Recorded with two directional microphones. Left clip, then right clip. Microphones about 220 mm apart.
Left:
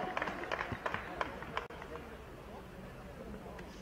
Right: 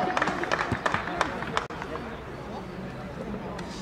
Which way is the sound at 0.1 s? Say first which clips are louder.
Right 11 dB; 35° right (ahead or behind).